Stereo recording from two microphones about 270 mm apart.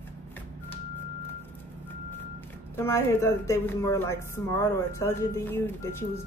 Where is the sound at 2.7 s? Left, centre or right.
Centre.